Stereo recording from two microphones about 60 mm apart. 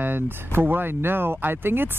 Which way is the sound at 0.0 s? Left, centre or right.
Right.